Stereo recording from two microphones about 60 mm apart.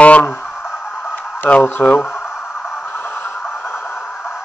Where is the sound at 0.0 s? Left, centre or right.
Left.